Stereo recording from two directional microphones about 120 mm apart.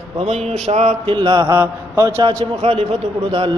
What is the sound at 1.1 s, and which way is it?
Speech, 40° right (ahead or behind).